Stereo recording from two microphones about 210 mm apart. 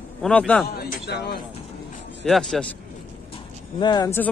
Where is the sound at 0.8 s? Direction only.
50° left (ahead or behind).